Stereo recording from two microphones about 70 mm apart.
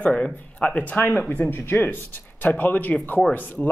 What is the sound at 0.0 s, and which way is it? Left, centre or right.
Speech, left.